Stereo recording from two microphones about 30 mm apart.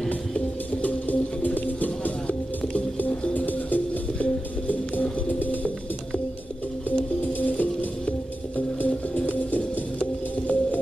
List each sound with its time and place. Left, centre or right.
0.8 s music: left
3.3 s music: left
5.4 s pigeon: left
7.4 s music: left
8.5 s music: left